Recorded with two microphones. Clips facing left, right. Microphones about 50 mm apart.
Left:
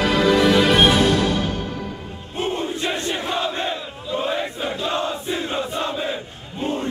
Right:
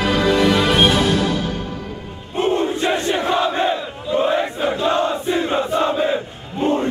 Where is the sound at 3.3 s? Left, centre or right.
Centre.